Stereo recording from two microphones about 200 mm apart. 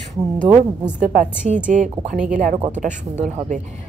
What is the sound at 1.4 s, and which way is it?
A woman's voice, 30° right (ahead or behind).